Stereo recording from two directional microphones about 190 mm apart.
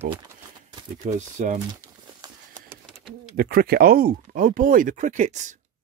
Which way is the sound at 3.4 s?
50° right (ahead or behind).